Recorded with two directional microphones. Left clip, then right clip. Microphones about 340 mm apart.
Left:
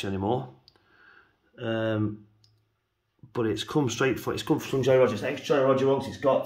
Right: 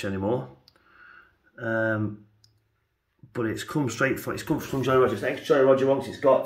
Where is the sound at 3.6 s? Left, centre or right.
Centre.